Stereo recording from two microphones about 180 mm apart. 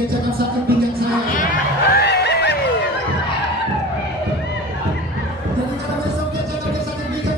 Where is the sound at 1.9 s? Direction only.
65° left (ahead or behind).